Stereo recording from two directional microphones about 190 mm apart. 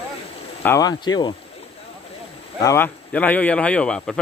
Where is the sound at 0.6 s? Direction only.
15° left (ahead or behind).